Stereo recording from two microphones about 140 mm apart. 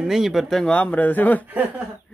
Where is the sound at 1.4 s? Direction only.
15° right (ahead or behind).